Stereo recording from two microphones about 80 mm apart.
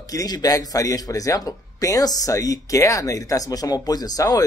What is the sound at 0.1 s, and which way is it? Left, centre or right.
Speech, left.